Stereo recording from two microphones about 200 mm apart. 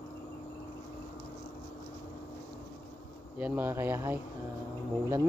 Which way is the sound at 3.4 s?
10° right (ahead or behind).